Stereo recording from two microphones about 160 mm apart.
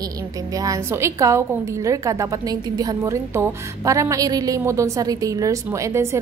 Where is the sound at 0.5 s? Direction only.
20° right (ahead or behind).